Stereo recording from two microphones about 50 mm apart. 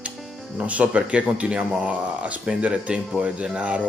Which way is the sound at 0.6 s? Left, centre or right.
Right.